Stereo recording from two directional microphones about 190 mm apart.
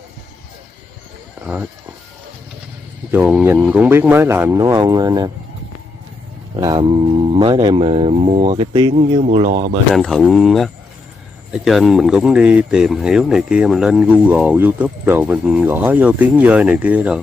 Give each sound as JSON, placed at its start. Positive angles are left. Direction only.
{"t": 1.4, "sound": "speech", "side_deg": -5}
{"t": 3.1, "sound": "speech", "side_deg": -10}
{"t": 6.5, "sound": "speech", "side_deg": -20}
{"t": 8.9, "sound": "speech", "side_deg": -35}
{"t": 9.9, "sound": "speech", "side_deg": 0}